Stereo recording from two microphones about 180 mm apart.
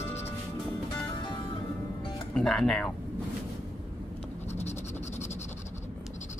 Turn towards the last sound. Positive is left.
turn(degrees=40)  # may be behind; listen again after turning